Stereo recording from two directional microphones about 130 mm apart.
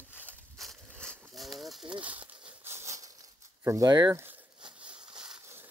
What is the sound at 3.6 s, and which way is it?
Speech, 25° right (ahead or behind).